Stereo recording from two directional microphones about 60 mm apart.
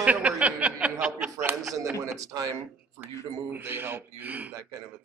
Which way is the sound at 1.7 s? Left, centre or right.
Right.